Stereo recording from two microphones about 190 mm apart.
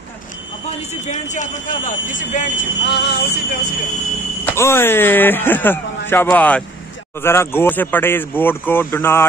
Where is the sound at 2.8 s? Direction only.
60° left (ahead or behind).